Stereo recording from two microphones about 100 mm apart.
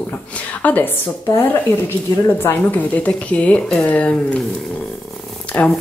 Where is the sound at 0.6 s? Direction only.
15° left (ahead or behind).